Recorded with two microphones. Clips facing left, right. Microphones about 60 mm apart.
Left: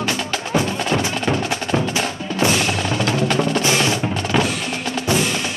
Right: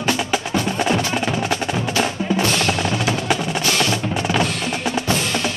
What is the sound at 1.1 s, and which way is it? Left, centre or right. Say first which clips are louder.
Wood block: even; centre.